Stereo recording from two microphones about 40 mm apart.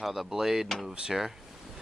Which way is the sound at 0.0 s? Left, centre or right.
Centre.